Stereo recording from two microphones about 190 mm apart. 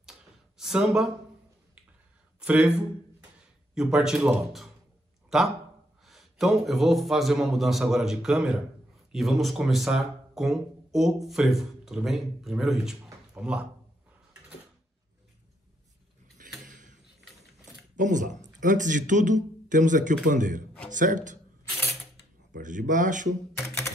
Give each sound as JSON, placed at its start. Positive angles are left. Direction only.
{"t": 0.6, "sound": "speech", "side_deg": -5}
{"t": 2.4, "sound": "a man's voice", "side_deg": -5}
{"t": 16.3, "sound": "a sound", "side_deg": -45}
{"t": 17.9, "sound": "a man's voice", "side_deg": -45}
{"t": 22.6, "sound": "a man's voice", "side_deg": -40}